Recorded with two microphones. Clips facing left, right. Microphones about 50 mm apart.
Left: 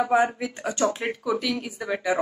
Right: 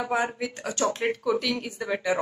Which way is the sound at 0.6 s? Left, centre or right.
Centre.